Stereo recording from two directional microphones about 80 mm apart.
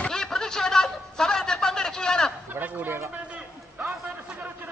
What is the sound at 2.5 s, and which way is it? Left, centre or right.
Fowl, right.